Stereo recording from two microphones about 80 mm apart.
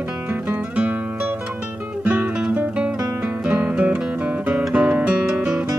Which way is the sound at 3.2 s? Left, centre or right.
Centre.